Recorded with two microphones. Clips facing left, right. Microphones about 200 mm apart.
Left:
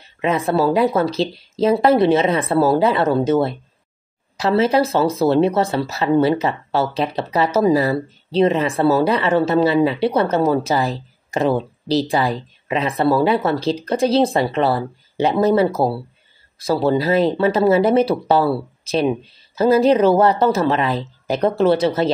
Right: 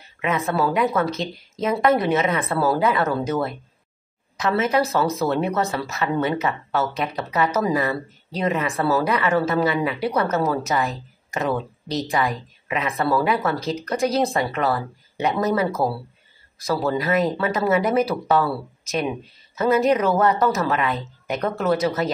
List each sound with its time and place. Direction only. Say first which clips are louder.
0.2 s speech: left 5 dB; 30° left (ahead or behind)